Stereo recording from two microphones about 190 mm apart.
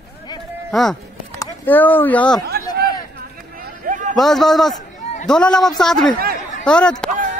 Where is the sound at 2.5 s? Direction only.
55° right (ahead or behind).